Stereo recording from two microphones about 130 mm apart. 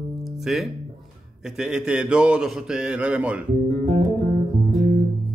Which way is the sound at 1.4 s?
5° right (ahead or behind).